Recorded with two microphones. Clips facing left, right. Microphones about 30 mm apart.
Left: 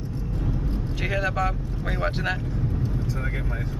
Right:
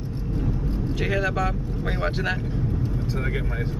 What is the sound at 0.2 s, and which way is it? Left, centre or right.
Vehicle, centre.